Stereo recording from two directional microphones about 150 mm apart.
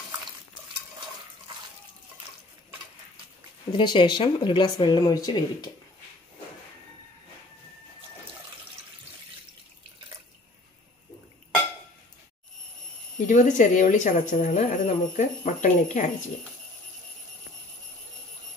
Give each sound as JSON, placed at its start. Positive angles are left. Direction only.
{"t": 3.7, "sound": "speech", "side_deg": 30}
{"t": 13.3, "sound": "speech", "side_deg": 60}